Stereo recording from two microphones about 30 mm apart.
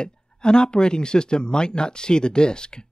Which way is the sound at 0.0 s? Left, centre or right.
Left.